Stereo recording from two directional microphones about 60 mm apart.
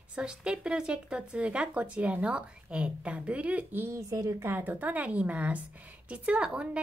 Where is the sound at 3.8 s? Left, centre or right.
Right.